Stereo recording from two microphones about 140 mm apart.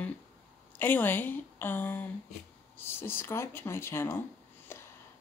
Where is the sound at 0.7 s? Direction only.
15° left (ahead or behind).